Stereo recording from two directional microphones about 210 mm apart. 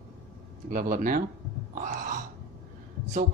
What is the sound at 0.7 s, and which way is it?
Speech, 40° right (ahead or behind).